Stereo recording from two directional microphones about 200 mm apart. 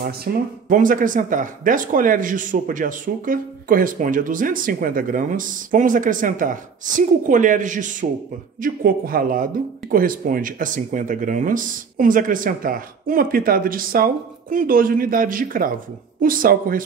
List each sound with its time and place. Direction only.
0.0 s speech: 45° right (ahead or behind)